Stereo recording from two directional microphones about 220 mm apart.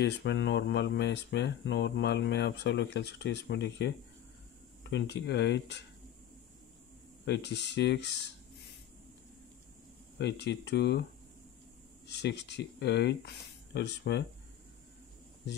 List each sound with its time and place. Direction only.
0.0 s speech: 50° left (ahead or behind)
7.2 s speech: 50° left (ahead or behind)
10.1 s speech: 50° left (ahead or behind)
12.1 s speech: 50° left (ahead or behind)